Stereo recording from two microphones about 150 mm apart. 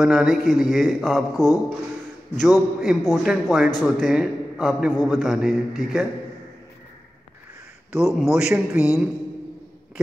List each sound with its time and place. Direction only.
0.0 s a man's voice: centre (ahead or behind)
1.3 s speech: 25° left (ahead or behind)
2.3 s a man's voice: centre (ahead or behind)
7.9 s a man's voice: 5° right (ahead or behind)